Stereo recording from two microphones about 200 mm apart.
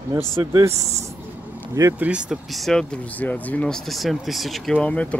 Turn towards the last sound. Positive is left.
turn(degrees=5)  # may be behind; listen again after turning